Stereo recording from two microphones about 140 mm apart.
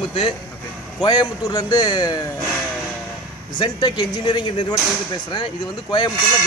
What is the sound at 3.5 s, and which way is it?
Speech, 30° left (ahead or behind).